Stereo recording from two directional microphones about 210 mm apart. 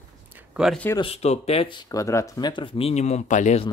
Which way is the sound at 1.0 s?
30° left (ahead or behind).